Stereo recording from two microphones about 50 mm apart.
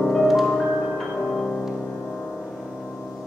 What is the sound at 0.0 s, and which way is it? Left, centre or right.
Music, centre.